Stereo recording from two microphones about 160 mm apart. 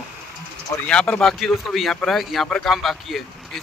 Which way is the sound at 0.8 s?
5° left (ahead or behind).